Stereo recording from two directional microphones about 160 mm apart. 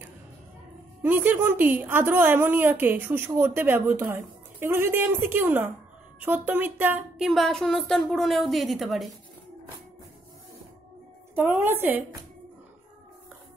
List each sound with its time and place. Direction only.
1.0 s a woman's voice: 10° right (ahead or behind)
7.2 s a woman's voice: centre (ahead or behind)
11.3 s a woman's voice: 15° right (ahead or behind)